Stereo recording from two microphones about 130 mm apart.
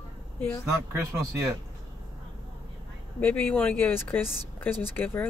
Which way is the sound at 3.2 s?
15° left (ahead or behind).